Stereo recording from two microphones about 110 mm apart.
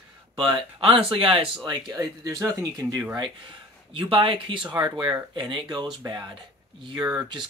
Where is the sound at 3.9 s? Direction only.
50° right (ahead or behind).